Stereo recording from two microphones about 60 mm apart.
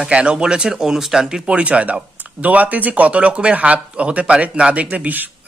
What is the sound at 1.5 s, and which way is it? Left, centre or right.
Speech, right.